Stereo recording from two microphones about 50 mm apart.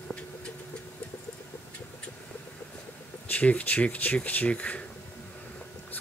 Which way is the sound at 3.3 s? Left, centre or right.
Left.